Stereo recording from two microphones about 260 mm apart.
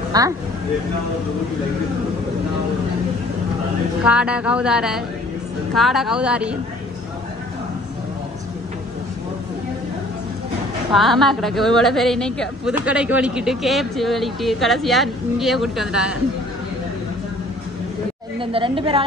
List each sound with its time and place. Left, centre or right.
0.1 s speech: centre
4.0 s speech: centre
10.9 s speech: centre
18.4 s a woman's voice: centre